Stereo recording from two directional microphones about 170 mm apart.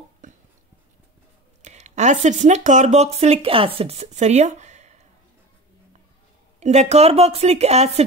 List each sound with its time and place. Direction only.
0.2 s a sound: 50° right (ahead or behind)
1.6 s speech: 45° right (ahead or behind)
6.6 s speech: 40° right (ahead or behind)